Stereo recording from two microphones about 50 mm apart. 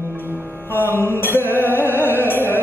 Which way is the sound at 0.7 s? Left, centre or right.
Left.